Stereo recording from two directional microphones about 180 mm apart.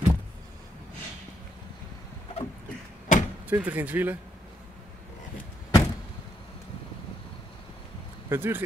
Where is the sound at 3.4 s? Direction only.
10° right (ahead or behind).